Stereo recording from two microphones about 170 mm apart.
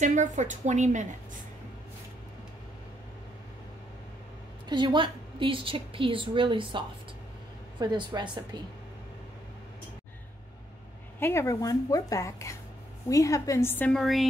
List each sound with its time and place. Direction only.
0.0 s a woman's voice: 45° right (ahead or behind)
4.6 s a woman's voice: 30° right (ahead or behind)
7.8 s a woman's voice: 25° right (ahead or behind)
11.1 s a woman's voice: 15° left (ahead or behind)